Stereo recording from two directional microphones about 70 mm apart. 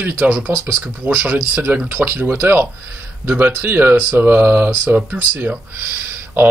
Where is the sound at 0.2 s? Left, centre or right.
Centre.